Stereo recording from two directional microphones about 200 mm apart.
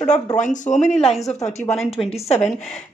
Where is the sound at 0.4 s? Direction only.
40° left (ahead or behind).